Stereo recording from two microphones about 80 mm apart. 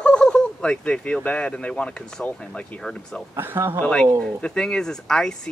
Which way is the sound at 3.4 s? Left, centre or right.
Right.